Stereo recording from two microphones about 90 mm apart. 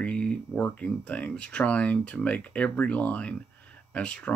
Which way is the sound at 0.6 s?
15° left (ahead or behind).